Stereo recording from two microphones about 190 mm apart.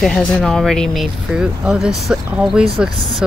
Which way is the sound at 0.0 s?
5° left (ahead or behind).